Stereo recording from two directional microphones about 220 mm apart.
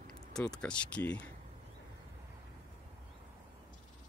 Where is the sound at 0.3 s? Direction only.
5° left (ahead or behind).